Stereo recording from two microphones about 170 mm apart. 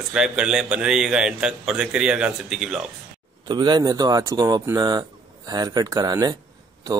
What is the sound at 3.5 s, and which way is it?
Speech, 25° right (ahead or behind).